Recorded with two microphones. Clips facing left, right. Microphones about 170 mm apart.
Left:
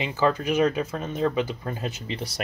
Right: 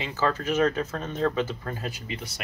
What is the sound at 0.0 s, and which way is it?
Speech, 15° left (ahead or behind).